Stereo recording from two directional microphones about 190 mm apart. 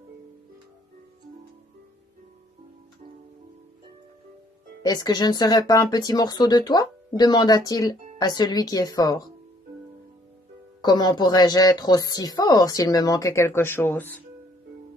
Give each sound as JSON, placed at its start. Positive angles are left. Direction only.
{"t": 4.8, "sound": "speech", "side_deg": 20}
{"t": 10.8, "sound": "speech", "side_deg": 20}